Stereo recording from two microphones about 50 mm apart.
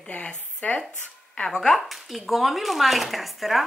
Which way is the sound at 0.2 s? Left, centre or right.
Left.